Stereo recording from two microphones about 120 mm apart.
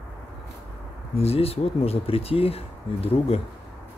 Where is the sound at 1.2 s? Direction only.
55° left (ahead or behind).